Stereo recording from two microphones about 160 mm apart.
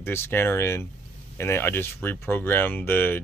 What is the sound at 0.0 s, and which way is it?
Speech, 15° left (ahead or behind).